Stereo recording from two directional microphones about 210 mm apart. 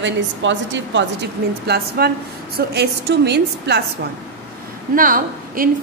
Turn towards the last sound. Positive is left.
turn(degrees=-40)  # may be behind; listen again after turning